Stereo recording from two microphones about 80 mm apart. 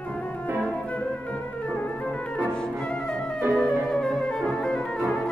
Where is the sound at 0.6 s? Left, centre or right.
Centre.